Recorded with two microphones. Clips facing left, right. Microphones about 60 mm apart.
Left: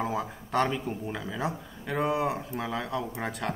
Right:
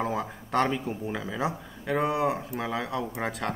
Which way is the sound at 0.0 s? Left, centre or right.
Centre.